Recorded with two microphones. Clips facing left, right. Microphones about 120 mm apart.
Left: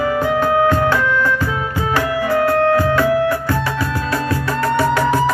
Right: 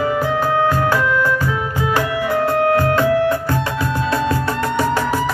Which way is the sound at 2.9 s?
20° right (ahead or behind).